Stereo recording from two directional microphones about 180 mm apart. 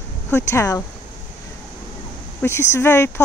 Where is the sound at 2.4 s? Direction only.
15° left (ahead or behind).